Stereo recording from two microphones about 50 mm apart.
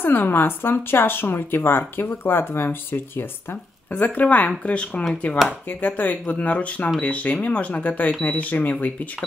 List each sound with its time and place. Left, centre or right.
0.0 s speech: left
3.9 s speech: left